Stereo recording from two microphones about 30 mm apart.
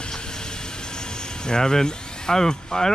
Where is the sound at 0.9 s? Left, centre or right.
Left.